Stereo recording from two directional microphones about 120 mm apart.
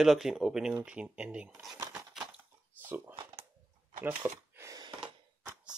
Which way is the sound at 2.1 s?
10° right (ahead or behind).